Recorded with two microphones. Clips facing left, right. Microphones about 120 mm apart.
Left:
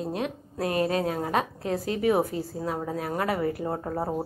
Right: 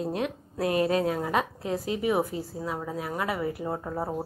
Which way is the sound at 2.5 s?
40° left (ahead or behind).